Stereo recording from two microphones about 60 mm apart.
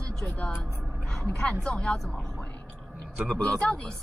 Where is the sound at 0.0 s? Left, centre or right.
Centre.